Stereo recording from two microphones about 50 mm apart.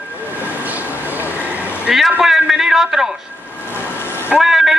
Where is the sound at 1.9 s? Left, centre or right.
Centre.